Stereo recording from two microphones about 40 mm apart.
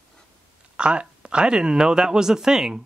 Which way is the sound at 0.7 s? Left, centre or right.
Right.